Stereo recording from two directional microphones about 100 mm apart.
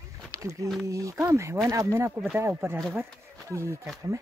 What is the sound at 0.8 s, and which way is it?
Speech, 30° right (ahead or behind).